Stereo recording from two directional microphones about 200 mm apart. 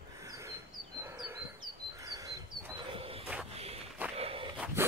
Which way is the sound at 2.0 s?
15° right (ahead or behind).